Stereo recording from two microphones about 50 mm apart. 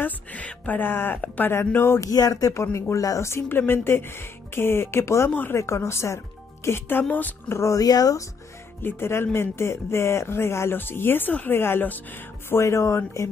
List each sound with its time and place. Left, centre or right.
0.0 s a sound: left
0.7 s speech: left
2.0 s speech: left
3.4 s speech: left
6.9 s speech: left
7.5 s speech: left
8.8 s speech: left
10.8 s speech: left
11.8 s speech: left
12.4 s speech: left